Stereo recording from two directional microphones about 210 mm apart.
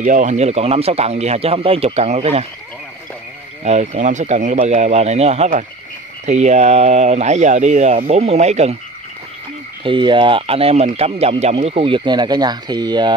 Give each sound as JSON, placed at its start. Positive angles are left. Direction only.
{"t": 0.0, "sound": "speech", "side_deg": -35}
{"t": 3.6, "sound": "speech", "side_deg": -35}
{"t": 9.8, "sound": "speech", "side_deg": -25}